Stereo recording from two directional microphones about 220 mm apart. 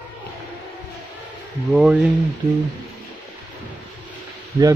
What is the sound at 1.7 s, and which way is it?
Speech, 5° right (ahead or behind).